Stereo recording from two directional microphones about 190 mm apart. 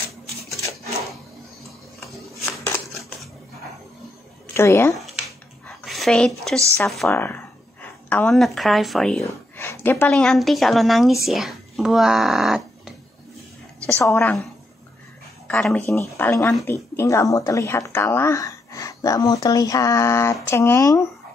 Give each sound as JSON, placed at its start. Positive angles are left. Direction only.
{"t": 2.0, "sound": "a sound", "side_deg": 0}
{"t": 4.6, "sound": "speech", "side_deg": 15}
{"t": 5.7, "sound": "a sound", "side_deg": 0}
{"t": 6.9, "sound": "a woman's voice", "side_deg": 0}
{"t": 9.2, "sound": "a woman's voice", "side_deg": 15}
{"t": 13.9, "sound": "speech", "side_deg": 10}
{"t": 15.4, "sound": "speech", "side_deg": 5}